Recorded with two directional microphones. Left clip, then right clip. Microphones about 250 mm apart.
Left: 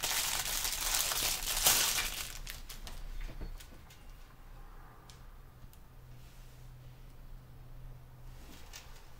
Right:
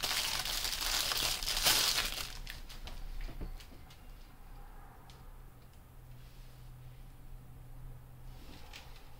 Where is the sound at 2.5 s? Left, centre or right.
Left.